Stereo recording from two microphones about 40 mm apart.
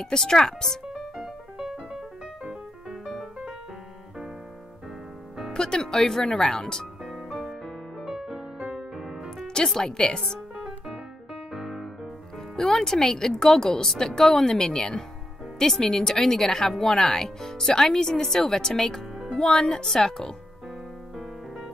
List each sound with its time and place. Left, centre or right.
0.0 s speech: centre
0.9 s music: centre
5.5 s speech: left
7.1 s music: centre
9.7 s speech: centre
10.5 s music: centre
11.5 s music: centre
12.5 s speech: centre